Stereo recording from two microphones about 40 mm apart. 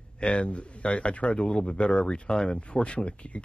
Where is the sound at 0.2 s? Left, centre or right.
Left.